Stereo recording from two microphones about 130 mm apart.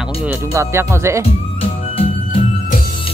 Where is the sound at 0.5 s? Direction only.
20° right (ahead or behind).